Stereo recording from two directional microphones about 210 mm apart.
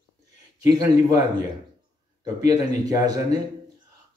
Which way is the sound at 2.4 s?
15° right (ahead or behind).